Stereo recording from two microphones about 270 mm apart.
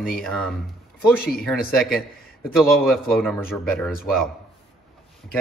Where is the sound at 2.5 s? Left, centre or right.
Centre.